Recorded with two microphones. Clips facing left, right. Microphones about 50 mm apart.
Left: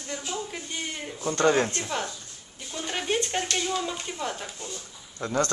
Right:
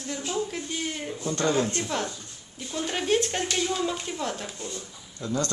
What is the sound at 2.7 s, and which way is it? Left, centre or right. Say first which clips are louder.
Speech: right 3 dB; centre.